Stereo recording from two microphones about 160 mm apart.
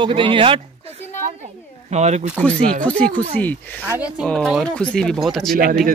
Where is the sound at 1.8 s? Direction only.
45° right (ahead or behind).